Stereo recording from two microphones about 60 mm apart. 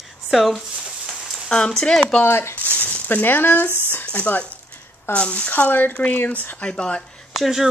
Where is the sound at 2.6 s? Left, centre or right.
Left.